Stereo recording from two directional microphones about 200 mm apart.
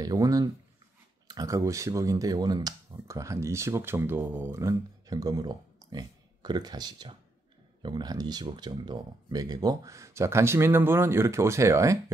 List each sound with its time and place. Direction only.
0.0 s speech: 20° right (ahead or behind)